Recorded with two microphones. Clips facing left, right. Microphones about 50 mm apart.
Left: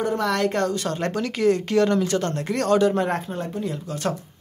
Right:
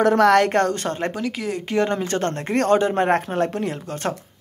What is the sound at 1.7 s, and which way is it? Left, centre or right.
Speech, right.